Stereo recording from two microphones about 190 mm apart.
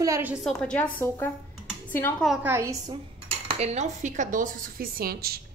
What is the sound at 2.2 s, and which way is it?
Speech, 5° right (ahead or behind).